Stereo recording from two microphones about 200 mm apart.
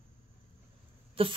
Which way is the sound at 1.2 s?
30° right (ahead or behind).